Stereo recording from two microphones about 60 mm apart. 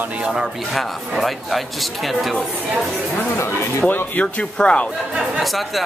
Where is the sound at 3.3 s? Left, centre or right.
Left.